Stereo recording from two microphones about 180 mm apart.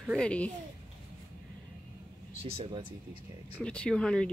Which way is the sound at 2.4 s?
35° right (ahead or behind).